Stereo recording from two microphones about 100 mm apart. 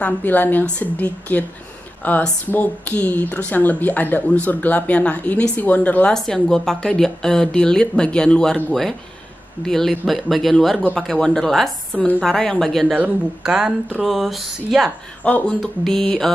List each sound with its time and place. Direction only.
0.0 s speech: 20° left (ahead or behind)
6.1 s speech: 5° left (ahead or behind)
9.7 s speech: 5° left (ahead or behind)
12.8 s a woman's voice: 15° right (ahead or behind)
13.4 s a woman's voice: 5° right (ahead or behind)
15.2 s speech: 15° left (ahead or behind)
15.6 s speech: centre (ahead or behind)